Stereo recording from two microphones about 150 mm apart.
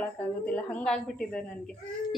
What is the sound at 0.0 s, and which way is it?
A woman's voice, 10° left (ahead or behind).